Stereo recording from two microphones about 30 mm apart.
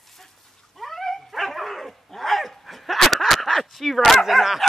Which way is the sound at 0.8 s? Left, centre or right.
Centre.